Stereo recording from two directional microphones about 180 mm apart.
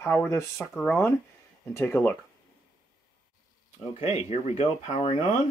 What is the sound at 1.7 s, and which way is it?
Speech, 15° left (ahead or behind).